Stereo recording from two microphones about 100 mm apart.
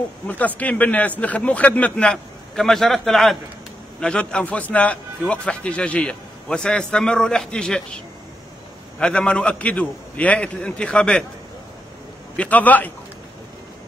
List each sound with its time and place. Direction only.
0.6 s a man's voice: 15° left (ahead or behind)
9.0 s a man's voice: 10° left (ahead or behind)
12.4 s a man's voice: 15° left (ahead or behind)